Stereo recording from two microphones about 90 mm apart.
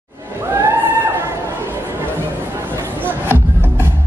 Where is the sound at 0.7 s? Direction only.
25° right (ahead or behind).